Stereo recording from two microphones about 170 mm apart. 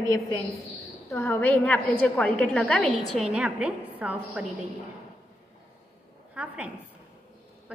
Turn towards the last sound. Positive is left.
turn(degrees=-5)  # may be behind; listen again after turning